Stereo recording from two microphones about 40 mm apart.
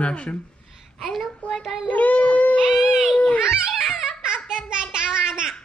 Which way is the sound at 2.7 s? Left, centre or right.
Centre.